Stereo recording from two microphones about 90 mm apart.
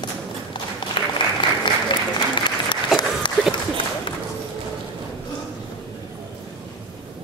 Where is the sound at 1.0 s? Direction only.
70° left (ahead or behind).